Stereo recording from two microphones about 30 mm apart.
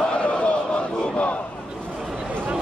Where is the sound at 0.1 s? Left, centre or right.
Left.